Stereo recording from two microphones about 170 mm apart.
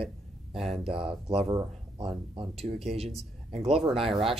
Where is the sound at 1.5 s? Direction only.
20° right (ahead or behind).